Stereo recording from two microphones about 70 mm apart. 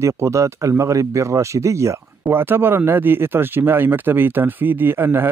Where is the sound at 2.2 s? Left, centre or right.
Right.